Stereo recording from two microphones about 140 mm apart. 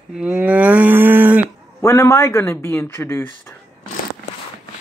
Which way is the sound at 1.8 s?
20° left (ahead or behind).